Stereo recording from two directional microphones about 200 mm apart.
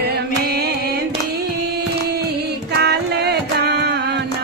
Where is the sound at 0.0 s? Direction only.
55° right (ahead or behind).